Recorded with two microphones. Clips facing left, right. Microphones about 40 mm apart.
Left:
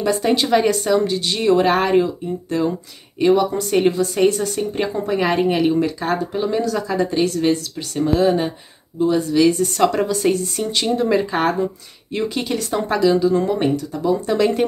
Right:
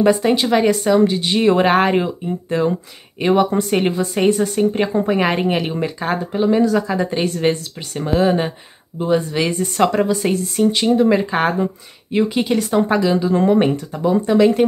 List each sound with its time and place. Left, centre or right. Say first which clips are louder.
0.2 s speech: right 1 dB; centre
7.2 s speech: left 2 dB; right
9.8 s speech: even; centre
14.2 s speech: right 7 dB; centre